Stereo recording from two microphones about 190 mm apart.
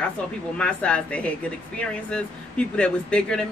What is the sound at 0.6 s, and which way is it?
Speech, 5° left (ahead or behind).